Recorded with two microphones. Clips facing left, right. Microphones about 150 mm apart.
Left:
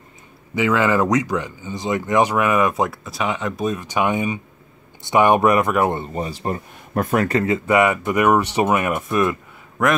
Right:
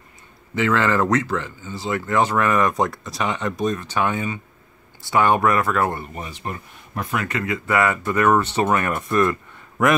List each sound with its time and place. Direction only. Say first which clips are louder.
0.6 s speech: left 2 dB; 10° left (ahead or behind); by 6.6 s 35° left (ahead or behind)
6.9 s speech: left 7 dB; 45° left (ahead or behind); by 9.4 s 10° left (ahead or behind)
9.8 s a man's voice: even; centre (ahead or behind)